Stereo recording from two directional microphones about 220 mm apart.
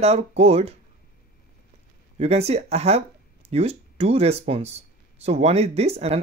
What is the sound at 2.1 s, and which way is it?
Speech, 30° right (ahead or behind).